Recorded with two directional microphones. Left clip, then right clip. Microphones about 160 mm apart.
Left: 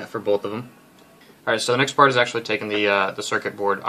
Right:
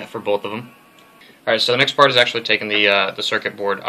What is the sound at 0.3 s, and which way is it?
Speech, 35° left (ahead or behind).